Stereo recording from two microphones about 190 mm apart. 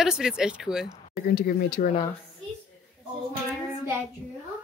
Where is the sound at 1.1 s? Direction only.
55° left (ahead or behind).